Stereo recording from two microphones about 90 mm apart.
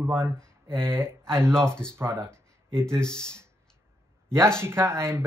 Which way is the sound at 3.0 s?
10° left (ahead or behind).